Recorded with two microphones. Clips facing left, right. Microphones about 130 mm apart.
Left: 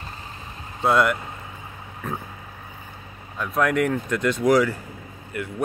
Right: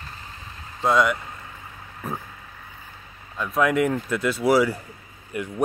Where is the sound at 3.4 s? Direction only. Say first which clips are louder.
Right 1 dB; centre (ahead or behind); by 5.5 s 20° right (ahead or behind).